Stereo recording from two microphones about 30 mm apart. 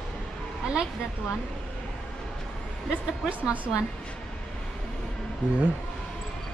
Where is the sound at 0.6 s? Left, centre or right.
Right.